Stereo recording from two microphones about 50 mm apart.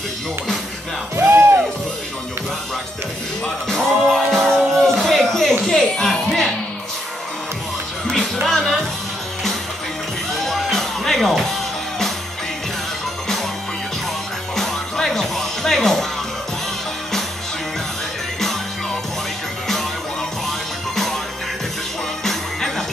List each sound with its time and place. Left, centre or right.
1.1 s music: right
3.6 s music: centre
8.5 s music: centre
10.4 s music: centre
14.5 s music: centre
20.4 s music: centre
22.2 s music: centre